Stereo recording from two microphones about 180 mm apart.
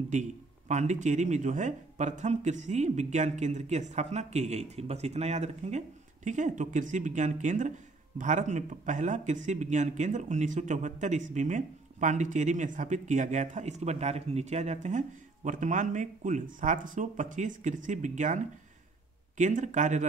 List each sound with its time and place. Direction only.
0.1 s speech: 40° right (ahead or behind)